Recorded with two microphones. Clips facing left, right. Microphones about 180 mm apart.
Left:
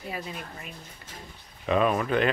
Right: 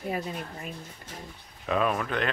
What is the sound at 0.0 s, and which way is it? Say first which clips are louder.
Speech: right 4 dB; 45° right (ahead or behind).